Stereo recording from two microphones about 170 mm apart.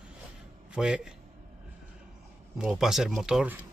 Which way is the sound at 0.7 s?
5° right (ahead or behind).